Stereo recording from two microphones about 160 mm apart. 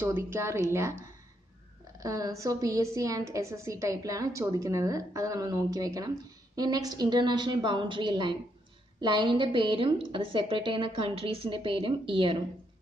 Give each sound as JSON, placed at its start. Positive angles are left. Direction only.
{"t": 0.0, "sound": "a woman's voice", "side_deg": -15}